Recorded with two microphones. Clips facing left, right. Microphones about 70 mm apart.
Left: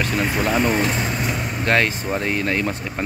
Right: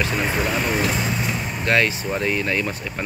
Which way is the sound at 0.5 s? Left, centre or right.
Centre.